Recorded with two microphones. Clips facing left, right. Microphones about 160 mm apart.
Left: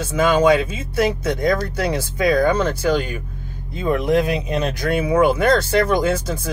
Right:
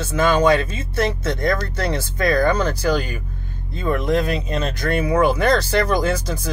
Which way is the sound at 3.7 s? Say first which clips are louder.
Left 2 dB; 15° left (ahead or behind).